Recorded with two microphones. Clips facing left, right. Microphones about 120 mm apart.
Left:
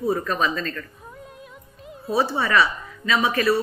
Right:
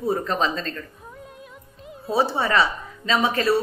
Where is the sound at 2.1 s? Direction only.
20° right (ahead or behind).